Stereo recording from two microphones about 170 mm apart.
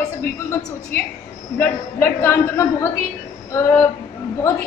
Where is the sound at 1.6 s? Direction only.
15° left (ahead or behind).